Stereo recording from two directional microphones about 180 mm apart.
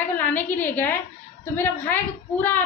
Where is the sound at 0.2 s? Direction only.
10° left (ahead or behind).